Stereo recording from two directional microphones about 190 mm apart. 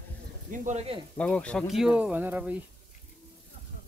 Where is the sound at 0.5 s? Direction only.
40° right (ahead or behind).